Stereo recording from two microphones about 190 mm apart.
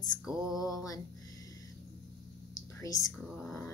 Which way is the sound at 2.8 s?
15° left (ahead or behind).